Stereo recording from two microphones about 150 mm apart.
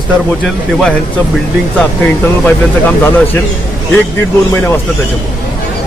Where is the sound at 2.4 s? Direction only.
15° left (ahead or behind).